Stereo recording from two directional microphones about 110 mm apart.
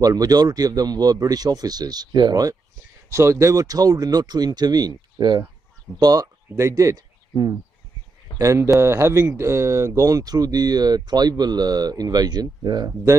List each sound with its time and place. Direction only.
0.0 s speech: 35° right (ahead or behind)
3.1 s speech: 25° right (ahead or behind)